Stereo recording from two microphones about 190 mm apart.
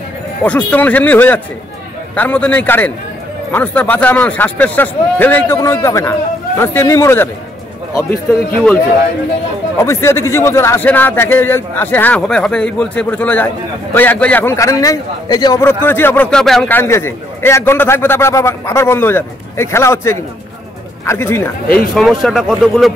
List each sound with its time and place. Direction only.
0.4 s a man's voice: 5° left (ahead or behind)
9.8 s a man's voice: 15° left (ahead or behind)
21.6 s speech: 50° left (ahead or behind)
22.2 s speech: centre (ahead or behind)